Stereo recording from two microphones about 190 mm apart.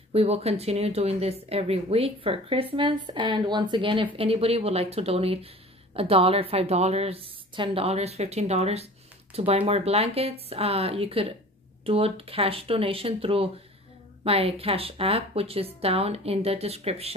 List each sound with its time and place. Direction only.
0.1 s speech: 30° right (ahead or behind)